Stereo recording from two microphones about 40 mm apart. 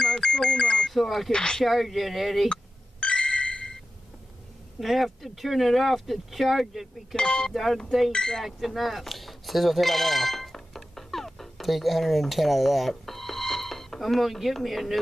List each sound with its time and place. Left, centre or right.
0.0 s a sound: centre
0.8 s speech: centre
1.3 s speech: centre
1.6 s speech: centre
2.5 s a sound: left
4.7 s speech: centre
7.2 s speech: centre
7.5 s speech: centre
8.1 s speech: centre
8.5 s speech: centre